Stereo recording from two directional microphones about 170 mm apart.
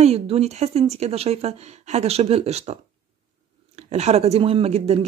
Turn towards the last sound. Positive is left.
turn(degrees=-35)  # may be behind; listen again after turning